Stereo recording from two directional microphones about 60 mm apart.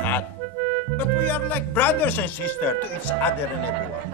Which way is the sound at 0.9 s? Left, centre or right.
Left.